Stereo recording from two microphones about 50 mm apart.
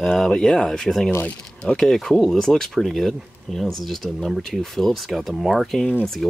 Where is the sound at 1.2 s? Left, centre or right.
Left.